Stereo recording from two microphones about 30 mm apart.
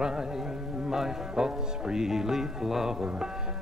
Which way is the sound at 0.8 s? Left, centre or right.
Centre.